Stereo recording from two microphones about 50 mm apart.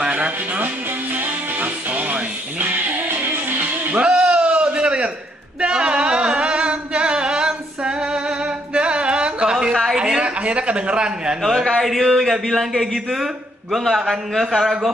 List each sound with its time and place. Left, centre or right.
0.0 s music: right
1.1 s music: right
3.9 s a sound: right
5.6 s singing: centre
9.9 s a sound: centre
10.4 s a man's voice: right
11.4 s a man's voice: centre